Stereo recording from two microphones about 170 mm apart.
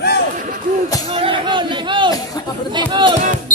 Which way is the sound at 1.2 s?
30° right (ahead or behind).